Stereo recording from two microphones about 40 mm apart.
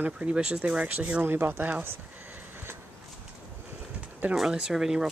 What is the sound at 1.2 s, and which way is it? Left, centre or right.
Speech, right.